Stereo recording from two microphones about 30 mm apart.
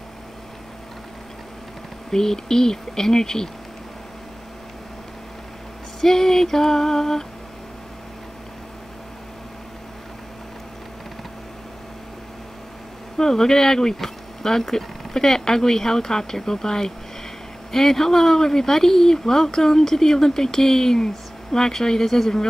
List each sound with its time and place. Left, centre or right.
2.0 s speech: centre
5.9 s speech: centre
13.2 s speech: centre
15.1 s speech: centre